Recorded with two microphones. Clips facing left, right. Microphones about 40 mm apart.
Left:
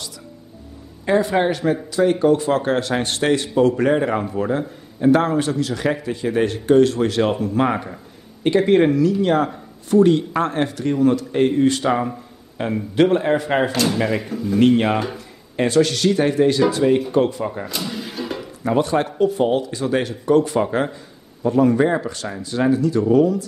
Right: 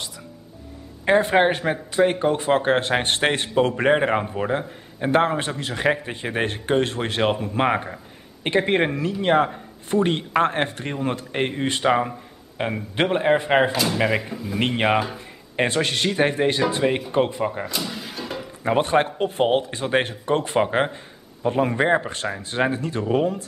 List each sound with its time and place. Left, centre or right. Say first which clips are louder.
1.0 s a man's voice: even; right
13.7 s speech: left 2 dB; centre
14.6 s a man's voice: left 4 dB; right
17.6 s a sound: left 2 dB; centre
18.6 s speech: even; right